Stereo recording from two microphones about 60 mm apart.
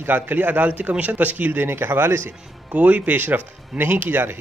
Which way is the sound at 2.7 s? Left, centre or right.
Right.